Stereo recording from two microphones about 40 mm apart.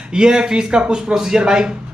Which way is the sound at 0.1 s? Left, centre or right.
Right.